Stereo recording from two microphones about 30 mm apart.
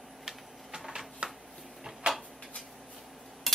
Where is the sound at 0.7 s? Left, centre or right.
Right.